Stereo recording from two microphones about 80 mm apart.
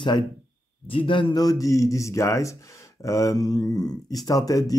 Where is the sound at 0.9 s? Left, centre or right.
Left.